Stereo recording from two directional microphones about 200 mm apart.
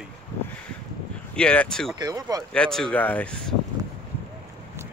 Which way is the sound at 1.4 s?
5° left (ahead or behind).